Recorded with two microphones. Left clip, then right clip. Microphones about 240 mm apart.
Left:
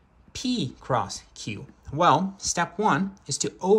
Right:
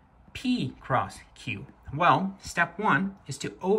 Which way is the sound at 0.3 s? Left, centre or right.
Centre.